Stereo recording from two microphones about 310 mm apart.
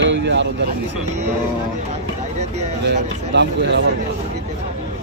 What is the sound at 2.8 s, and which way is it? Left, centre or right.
Speech, right.